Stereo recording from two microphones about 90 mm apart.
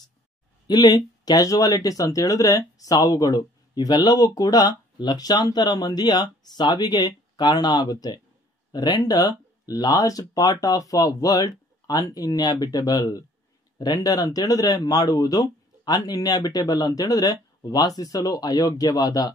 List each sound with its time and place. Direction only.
0.7 s speech: 50° left (ahead or behind)